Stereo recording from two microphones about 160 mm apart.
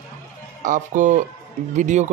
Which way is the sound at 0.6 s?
50° right (ahead or behind).